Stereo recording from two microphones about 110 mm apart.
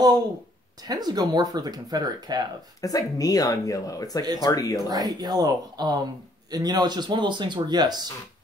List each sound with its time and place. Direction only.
0.8 s speech: 40° right (ahead or behind)
2.8 s speech: 35° left (ahead or behind)
4.8 s speech: 35° right (ahead or behind)